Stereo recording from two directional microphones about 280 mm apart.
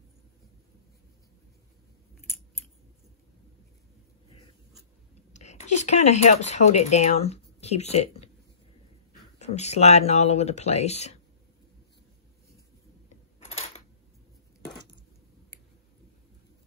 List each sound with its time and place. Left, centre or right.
5.3 s speech: left
9.4 s speech: left
13.5 s a sound: left